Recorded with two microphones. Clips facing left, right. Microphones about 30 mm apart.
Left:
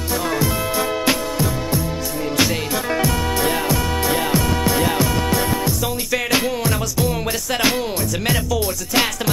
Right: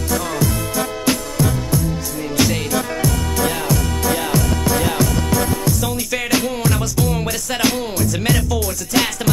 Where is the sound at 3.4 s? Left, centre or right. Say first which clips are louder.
Left 1 dB; centre.